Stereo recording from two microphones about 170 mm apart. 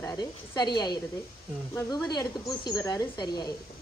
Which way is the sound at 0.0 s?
20° left (ahead or behind).